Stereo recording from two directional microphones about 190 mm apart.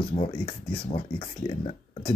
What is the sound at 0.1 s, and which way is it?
Speech, 30° left (ahead or behind).